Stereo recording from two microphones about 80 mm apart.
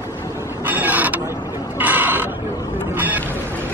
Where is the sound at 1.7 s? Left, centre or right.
Right.